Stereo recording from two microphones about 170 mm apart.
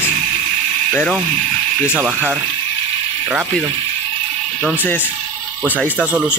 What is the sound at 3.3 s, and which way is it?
Speech, centre (ahead or behind).